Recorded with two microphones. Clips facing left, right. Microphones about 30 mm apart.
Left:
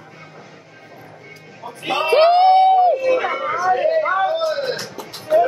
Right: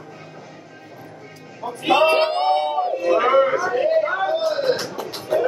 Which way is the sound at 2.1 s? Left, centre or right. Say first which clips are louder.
Left 6 dB; left.